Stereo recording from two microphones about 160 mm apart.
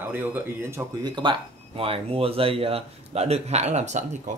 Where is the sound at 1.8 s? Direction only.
35° right (ahead or behind).